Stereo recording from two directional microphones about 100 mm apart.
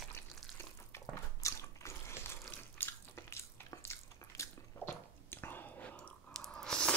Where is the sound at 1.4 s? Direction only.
30° left (ahead or behind).